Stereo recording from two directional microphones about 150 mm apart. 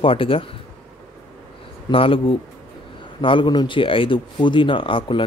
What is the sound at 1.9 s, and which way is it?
Speech, 35° left (ahead or behind).